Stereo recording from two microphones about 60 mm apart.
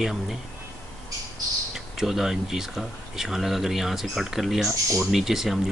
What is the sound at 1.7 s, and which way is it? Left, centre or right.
Speech, centre.